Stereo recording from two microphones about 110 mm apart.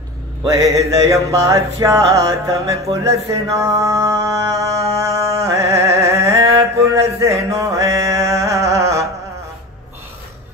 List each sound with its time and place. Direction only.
0.5 s music: 30° right (ahead or behind)
7.2 s mantra: 30° right (ahead or behind)